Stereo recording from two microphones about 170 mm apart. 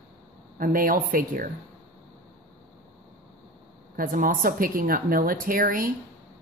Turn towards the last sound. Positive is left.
turn(degrees=-60)  # may be behind; listen again after turning